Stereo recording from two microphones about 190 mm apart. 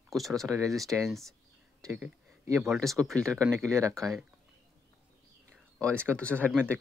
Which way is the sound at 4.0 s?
Centre (ahead or behind).